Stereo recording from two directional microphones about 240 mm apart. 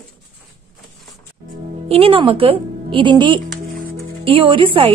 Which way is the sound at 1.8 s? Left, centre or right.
Right.